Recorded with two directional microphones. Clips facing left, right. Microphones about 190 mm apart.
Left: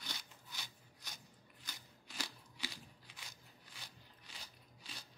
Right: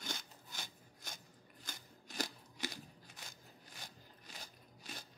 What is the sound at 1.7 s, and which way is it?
Scissors, 45° right (ahead or behind).